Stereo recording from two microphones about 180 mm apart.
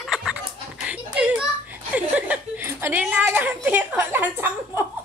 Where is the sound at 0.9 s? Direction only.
5° right (ahead or behind).